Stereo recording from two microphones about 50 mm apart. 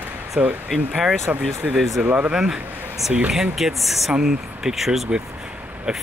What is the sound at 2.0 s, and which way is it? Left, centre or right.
Speech, right.